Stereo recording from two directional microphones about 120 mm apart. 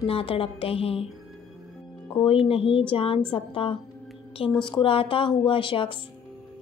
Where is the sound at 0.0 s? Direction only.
50° left (ahead or behind).